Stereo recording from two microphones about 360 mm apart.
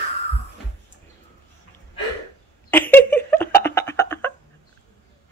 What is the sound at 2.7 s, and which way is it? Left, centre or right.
Giggle, centre.